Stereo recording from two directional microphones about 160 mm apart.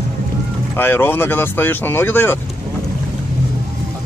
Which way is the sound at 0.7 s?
15° left (ahead or behind).